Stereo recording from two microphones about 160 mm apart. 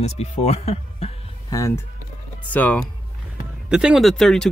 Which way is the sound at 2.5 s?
10° left (ahead or behind).